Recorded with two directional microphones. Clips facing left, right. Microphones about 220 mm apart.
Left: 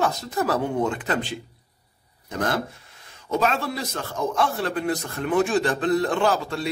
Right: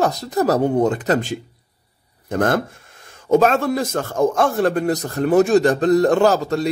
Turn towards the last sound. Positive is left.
turn(degrees=-40)  # may be behind; listen again after turning